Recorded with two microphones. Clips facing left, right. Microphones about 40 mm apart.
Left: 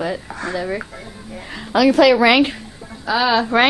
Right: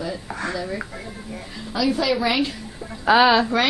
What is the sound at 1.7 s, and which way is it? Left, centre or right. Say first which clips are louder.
Speech: left 9 dB; left.